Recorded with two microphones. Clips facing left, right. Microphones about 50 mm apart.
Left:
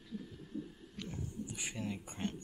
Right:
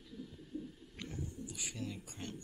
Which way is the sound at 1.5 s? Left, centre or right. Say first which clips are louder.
Left 5 dB; left.